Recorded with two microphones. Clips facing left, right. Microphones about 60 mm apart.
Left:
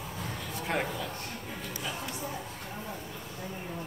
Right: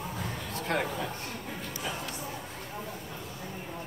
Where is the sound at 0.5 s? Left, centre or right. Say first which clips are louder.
Right 1 dB; centre.